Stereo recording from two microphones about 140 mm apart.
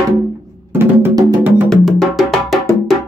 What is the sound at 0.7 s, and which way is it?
Music, 15° right (ahead or behind).